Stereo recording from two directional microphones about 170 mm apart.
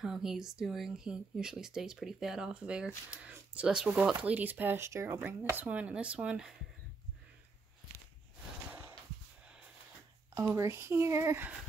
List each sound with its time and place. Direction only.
0.0 s speech: centre (ahead or behind)
10.3 s speech: 15° right (ahead or behind)